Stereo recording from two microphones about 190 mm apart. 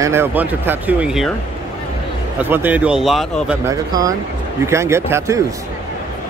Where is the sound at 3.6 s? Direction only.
20° right (ahead or behind).